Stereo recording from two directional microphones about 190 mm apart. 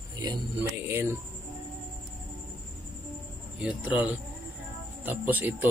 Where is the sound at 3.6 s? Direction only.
5° right (ahead or behind).